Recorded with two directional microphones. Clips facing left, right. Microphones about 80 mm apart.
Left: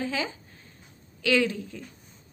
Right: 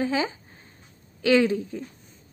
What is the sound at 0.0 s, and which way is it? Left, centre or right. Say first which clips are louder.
A woman's voice: right 5 dB; right.